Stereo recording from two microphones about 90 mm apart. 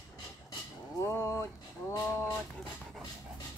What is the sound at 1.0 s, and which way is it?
Speech, 30° left (ahead or behind).